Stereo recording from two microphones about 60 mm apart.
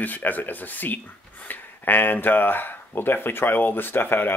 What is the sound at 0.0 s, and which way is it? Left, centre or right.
Speech, left.